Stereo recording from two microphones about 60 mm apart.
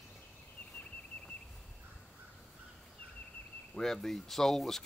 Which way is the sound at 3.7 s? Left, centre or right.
Centre.